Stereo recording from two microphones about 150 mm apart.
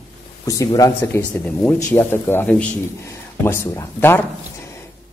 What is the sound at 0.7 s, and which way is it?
Speech, 20° left (ahead or behind).